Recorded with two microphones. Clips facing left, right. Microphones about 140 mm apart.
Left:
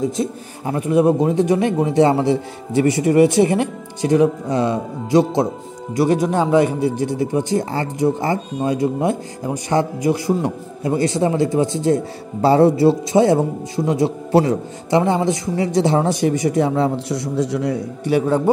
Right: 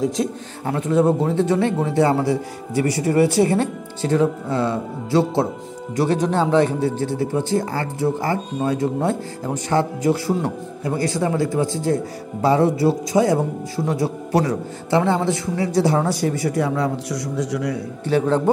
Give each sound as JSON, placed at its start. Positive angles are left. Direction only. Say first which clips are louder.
{"t": 0.0, "sound": "a man's voice", "louder": "even", "side_deg": 5}
{"t": 18.0, "sound": "a man's voice", "louder": "left 1 dB", "side_deg": 10}